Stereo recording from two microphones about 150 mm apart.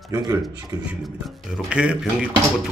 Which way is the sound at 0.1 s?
20° right (ahead or behind).